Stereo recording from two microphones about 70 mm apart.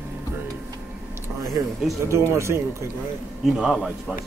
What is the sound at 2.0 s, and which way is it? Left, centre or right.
Speech, right.